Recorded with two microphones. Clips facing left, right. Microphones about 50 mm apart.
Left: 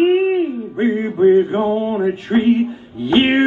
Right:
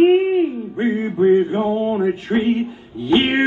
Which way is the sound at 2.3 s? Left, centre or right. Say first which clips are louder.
Left 4 dB; left.